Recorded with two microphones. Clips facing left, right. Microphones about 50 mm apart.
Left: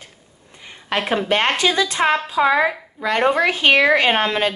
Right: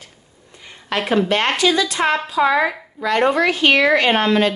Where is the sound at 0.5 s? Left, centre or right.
Left.